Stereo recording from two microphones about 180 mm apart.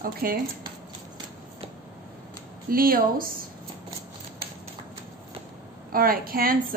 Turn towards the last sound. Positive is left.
turn(degrees=-55)  # may be behind; listen again after turning